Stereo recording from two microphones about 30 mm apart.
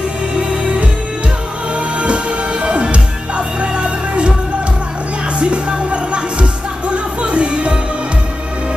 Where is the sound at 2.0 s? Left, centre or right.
Right.